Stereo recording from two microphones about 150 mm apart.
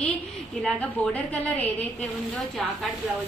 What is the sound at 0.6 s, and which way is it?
Speech, 10° left (ahead or behind).